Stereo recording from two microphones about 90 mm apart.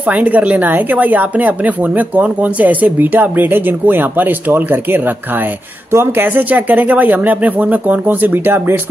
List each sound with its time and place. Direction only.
0.0 s speech: 15° right (ahead or behind)